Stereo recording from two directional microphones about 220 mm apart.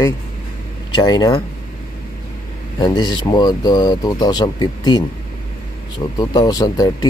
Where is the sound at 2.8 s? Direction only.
20° left (ahead or behind).